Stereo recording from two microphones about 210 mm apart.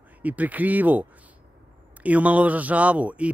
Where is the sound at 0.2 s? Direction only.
5° right (ahead or behind).